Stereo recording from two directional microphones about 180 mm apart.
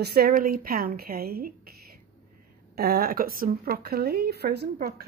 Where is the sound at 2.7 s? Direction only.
55° right (ahead or behind).